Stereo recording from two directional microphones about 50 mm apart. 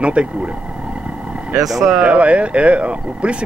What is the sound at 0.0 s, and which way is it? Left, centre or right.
Speech, right.